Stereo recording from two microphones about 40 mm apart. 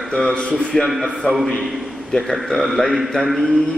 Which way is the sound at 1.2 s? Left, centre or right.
Left.